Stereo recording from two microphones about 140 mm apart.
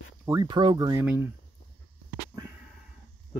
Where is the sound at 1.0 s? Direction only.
15° right (ahead or behind).